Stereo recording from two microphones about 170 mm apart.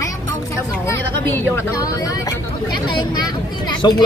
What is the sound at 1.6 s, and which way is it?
Speech, 20° left (ahead or behind).